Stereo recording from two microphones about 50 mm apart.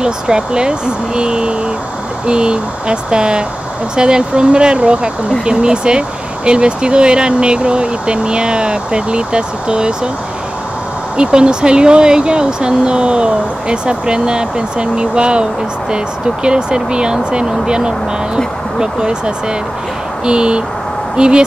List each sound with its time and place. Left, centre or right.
0.0 s speech: centre
11.1 s speech: centre
16.4 s speech: centre